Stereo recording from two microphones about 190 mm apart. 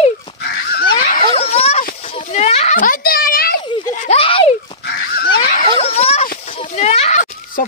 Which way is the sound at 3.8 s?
40° left (ahead or behind).